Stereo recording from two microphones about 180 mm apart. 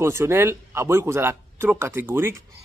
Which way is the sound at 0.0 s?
15° right (ahead or behind).